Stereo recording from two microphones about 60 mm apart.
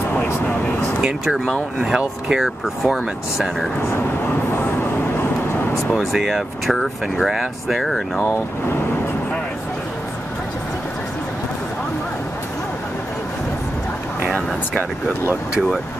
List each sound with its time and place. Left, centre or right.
1.0 s speech: centre
2.0 s speech: centre
2.4 s speech: centre
5.9 s speech: centre